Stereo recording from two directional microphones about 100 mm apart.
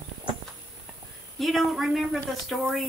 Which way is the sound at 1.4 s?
Centre (ahead or behind).